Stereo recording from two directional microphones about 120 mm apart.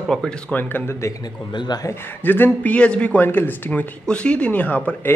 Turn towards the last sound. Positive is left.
turn(degrees=15)  # may be behind; listen again after turning